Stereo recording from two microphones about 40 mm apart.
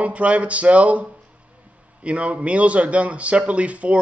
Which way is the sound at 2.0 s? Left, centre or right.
Right.